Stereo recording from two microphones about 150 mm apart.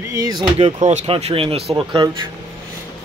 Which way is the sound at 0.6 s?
40° right (ahead or behind).